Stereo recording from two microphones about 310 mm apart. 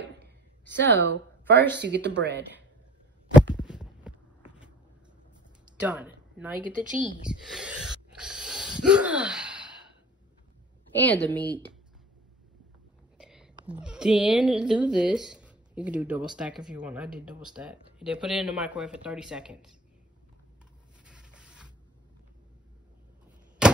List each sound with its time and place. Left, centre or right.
0.7 s speech: right
3.5 s heart sounds: centre
5.8 s speech: centre
8.2 s wheeze: centre
11.0 s speech: centre
13.2 s speech: centre
23.6 s a sound: centre